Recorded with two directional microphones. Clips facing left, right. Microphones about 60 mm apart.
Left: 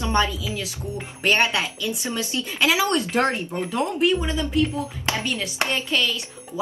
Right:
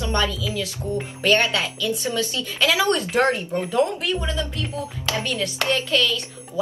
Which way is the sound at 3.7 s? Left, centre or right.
Centre.